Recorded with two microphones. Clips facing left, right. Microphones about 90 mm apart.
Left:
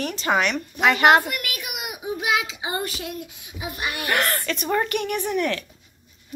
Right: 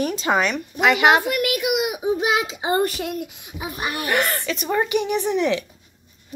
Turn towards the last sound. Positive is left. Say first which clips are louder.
# right 4 dB
turn(degrees=-15)  # may be behind; listen again after turning